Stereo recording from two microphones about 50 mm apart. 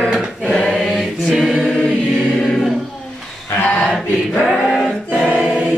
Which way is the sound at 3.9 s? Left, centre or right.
Centre.